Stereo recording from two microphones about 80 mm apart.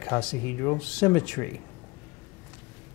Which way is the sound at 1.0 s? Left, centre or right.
Left.